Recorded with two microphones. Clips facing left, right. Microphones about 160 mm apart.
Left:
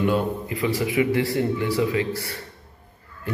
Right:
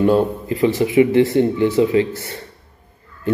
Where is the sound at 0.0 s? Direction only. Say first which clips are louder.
Right 7 dB; 30° right (ahead or behind).